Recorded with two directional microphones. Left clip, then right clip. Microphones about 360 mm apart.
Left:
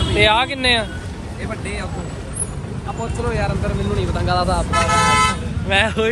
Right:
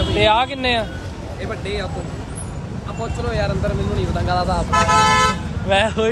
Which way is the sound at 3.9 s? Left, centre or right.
Centre.